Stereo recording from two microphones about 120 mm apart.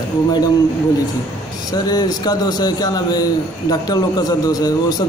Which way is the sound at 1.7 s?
35° left (ahead or behind).